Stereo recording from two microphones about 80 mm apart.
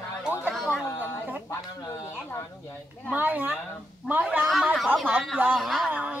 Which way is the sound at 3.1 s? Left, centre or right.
Right.